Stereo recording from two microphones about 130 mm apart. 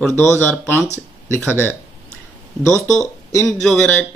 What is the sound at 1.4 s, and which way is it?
Speech, 15° left (ahead or behind).